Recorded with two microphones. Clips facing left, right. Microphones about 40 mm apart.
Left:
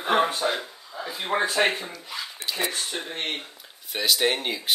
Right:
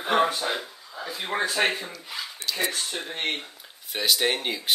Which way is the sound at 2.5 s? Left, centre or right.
Centre.